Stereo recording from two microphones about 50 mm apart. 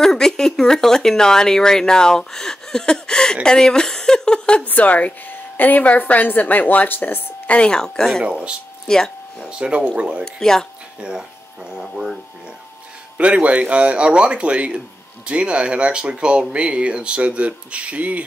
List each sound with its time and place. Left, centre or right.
0.0 s speech: centre
4.6 s a woman's voice: left
7.4 s speech: left
7.7 s speech: centre
8.2 s speech: right
8.8 s speech: centre
9.5 s speech: centre
10.2 s speech: centre
11.0 s speech: centre
11.7 s speech: centre
13.2 s speech: right